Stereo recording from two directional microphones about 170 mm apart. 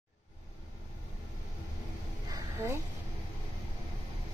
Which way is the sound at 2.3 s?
15° right (ahead or behind).